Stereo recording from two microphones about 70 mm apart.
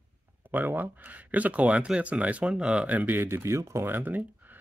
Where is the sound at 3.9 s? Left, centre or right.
Right.